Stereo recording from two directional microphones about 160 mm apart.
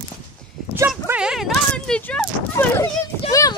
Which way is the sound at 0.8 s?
5° right (ahead or behind).